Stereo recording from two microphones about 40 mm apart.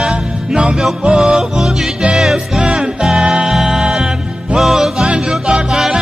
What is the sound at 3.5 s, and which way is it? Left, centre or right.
Music, centre.